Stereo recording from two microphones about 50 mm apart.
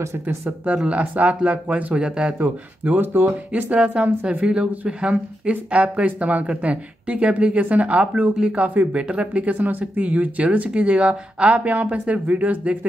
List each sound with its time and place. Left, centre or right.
0.0 s speech: right
0.7 s speech: right
3.0 s speech: right
3.7 s speech: right